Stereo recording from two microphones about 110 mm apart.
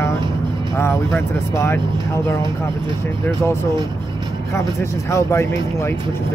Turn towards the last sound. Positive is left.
turn(degrees=25)  # may be behind; listen again after turning